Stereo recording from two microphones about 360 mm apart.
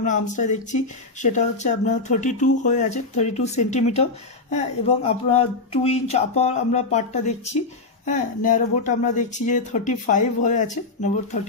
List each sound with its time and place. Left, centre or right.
0.0 s speech: left